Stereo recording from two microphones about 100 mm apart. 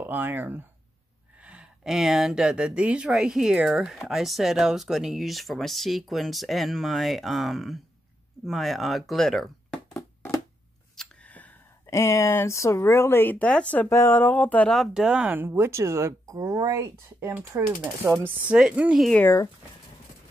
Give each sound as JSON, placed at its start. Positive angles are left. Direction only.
{"t": 0.0, "sound": "speech", "side_deg": -20}
{"t": 1.4, "sound": "speech", "side_deg": -10}
{"t": 9.9, "sound": "a sound", "side_deg": 30}
{"t": 11.0, "sound": "a sound", "side_deg": 15}
{"t": 11.8, "sound": "speech", "side_deg": 30}
{"t": 13.8, "sound": "speech", "side_deg": 25}
{"t": 14.7, "sound": "speech", "side_deg": -5}
{"t": 18.5, "sound": "speech", "side_deg": -10}
{"t": 19.2, "sound": "speech", "side_deg": 30}